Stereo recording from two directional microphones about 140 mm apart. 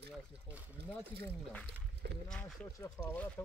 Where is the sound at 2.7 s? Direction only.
20° left (ahead or behind).